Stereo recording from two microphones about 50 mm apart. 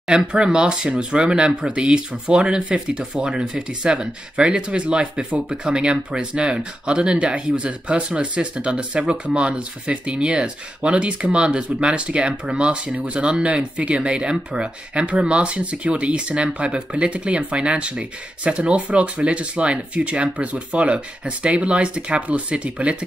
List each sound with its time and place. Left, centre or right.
0.1 s speech: centre